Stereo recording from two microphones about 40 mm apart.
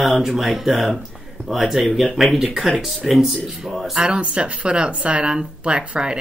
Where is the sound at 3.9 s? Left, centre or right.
Right.